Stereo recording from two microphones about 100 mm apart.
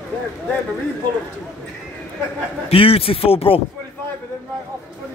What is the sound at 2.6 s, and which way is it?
Speech, 75° left (ahead or behind).